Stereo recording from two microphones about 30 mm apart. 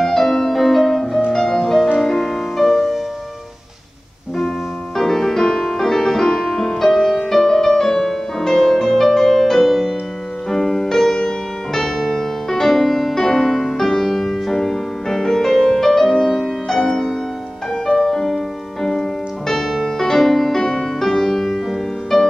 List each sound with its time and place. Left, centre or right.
0.0 s music: centre
4.9 s music: centre
13.4 s music: centre